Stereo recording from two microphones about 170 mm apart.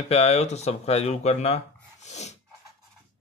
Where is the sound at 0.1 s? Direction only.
40° left (ahead or behind).